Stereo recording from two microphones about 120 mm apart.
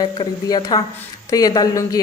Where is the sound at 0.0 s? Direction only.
35° left (ahead or behind).